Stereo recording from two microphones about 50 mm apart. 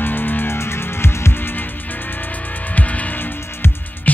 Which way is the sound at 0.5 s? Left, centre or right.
Left.